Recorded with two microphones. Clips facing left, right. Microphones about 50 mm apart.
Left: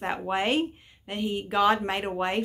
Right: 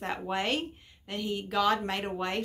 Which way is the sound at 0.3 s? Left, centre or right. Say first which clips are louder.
Left 6 dB; centre.